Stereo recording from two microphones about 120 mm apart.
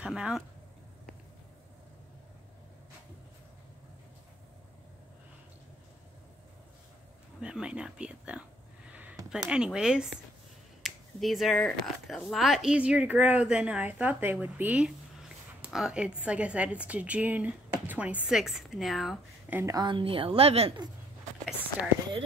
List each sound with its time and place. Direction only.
0.0 s a woman's voice: 5° right (ahead or behind)
7.3 s a woman's voice: 5° right (ahead or behind)
19.5 s a woman's voice: 25° right (ahead or behind)
19.9 s a woman's voice: 45° right (ahead or behind)